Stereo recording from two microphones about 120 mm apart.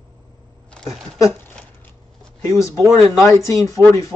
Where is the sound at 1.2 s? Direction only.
20° left (ahead or behind).